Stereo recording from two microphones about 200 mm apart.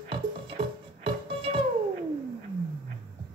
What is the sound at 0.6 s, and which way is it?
Music, 25° right (ahead or behind).